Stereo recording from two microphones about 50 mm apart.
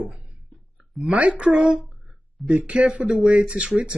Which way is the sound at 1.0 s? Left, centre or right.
Right.